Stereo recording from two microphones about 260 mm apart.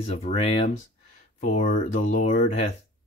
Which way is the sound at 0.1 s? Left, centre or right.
Left.